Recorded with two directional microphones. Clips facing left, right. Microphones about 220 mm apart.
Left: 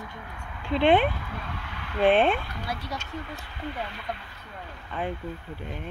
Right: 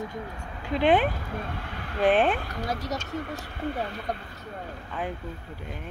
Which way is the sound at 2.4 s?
45° right (ahead or behind).